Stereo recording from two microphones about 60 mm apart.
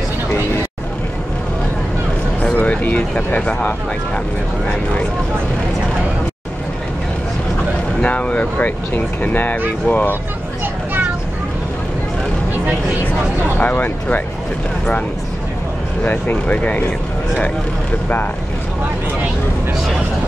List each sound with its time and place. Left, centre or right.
2.4 s a sound: left
8.0 s speech: left
13.6 s speech: left
16.0 s speech: left
18.0 s speech: left